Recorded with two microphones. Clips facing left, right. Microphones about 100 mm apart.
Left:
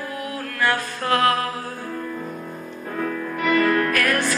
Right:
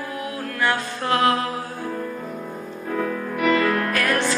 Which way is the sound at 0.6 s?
20° right (ahead or behind).